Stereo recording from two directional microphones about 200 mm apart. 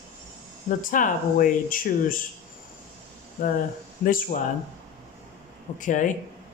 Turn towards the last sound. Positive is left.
turn(degrees=40)  # may be behind; listen again after turning